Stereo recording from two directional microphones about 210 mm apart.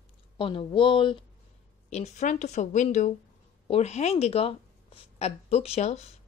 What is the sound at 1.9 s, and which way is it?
A woman's voice, 35° left (ahead or behind).